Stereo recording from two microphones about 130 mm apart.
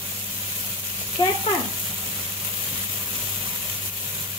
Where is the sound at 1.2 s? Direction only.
35° left (ahead or behind).